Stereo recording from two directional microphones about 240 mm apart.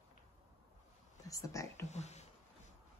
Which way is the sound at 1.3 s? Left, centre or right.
Centre.